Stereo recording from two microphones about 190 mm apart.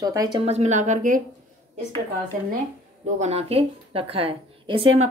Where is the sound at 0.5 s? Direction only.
35° right (ahead or behind).